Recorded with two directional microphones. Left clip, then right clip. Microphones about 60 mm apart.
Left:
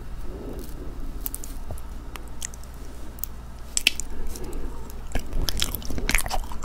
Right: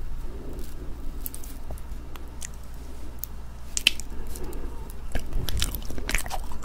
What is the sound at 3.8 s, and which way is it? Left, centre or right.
Squish, centre.